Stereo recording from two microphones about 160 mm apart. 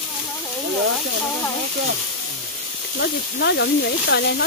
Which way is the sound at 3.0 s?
90° left.